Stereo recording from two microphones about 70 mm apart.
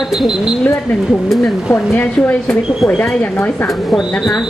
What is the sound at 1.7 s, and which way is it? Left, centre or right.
Speech, left.